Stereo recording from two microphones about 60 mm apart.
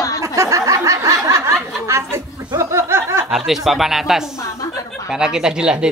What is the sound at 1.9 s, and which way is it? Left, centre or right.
Chuckle, right.